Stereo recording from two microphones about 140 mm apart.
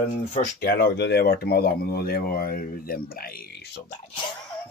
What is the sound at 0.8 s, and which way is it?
Speech, 90° left.